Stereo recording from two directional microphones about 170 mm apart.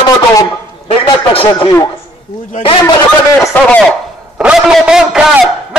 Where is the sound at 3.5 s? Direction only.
5° left (ahead or behind).